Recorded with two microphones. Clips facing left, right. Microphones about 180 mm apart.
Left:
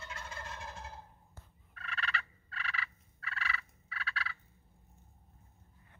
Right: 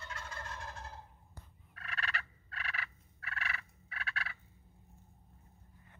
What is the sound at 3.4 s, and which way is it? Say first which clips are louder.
Fowl: left 2 dB; 50° right (ahead or behind).